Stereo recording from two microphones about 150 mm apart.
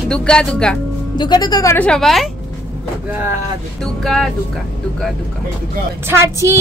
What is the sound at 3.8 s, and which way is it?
Speech, 5° left (ahead or behind).